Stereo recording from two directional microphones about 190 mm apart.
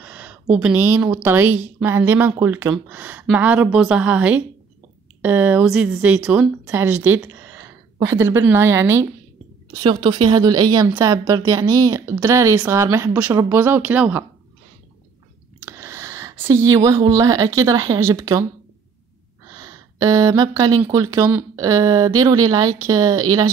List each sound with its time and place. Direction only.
0.0 s a woman's voice: 10° right (ahead or behind)
9.7 s a woman's voice: 25° right (ahead or behind); by 14.2 s 10° right (ahead or behind)
15.6 s a sound: 15° right (ahead or behind)
16.7 s a woman's voice: 15° right (ahead or behind)
19.5 s speech: 20° right (ahead or behind)